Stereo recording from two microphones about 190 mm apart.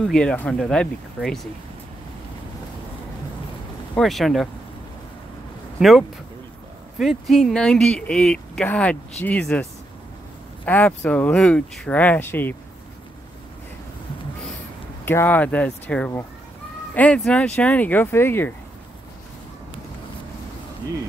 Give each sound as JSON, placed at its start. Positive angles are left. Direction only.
{"t": 0.0, "sound": "speech", "side_deg": 5}
{"t": 3.9, "sound": "speech", "side_deg": 0}
{"t": 5.8, "sound": "speech", "side_deg": 0}
{"t": 15.0, "sound": "speech", "side_deg": 10}